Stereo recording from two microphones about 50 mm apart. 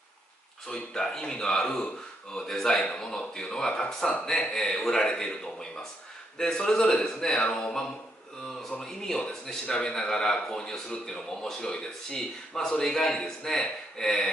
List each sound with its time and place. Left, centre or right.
0.7 s a man's voice: centre
7.4 s a sound: centre
8.8 s a man's voice: centre